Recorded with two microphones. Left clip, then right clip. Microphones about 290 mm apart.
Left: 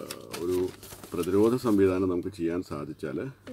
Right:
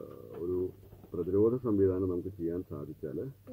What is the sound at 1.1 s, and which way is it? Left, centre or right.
Speech, left.